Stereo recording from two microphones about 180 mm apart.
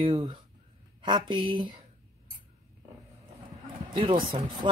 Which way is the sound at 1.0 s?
25° right (ahead or behind).